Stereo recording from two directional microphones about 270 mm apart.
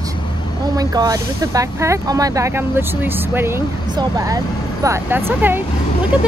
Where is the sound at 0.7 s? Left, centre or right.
Centre.